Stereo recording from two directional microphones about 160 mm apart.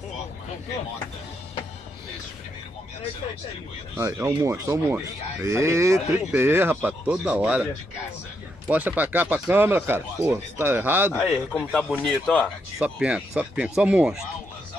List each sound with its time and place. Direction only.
3.9 s speech: 20° right (ahead or behind)
8.6 s speech: 10° right (ahead or behind)
11.1 s speech: 5° left (ahead or behind)